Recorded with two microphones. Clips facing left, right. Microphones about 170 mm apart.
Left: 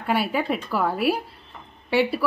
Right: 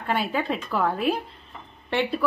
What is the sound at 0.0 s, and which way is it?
A woman's voice, 10° left (ahead or behind).